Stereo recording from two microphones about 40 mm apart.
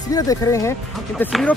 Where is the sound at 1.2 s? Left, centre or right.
Left.